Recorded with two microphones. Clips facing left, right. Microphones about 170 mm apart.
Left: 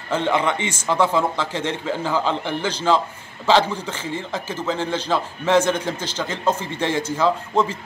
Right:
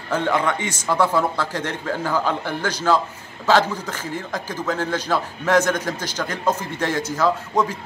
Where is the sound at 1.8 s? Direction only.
10° left (ahead or behind).